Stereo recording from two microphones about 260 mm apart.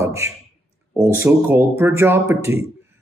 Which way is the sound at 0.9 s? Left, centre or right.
Centre.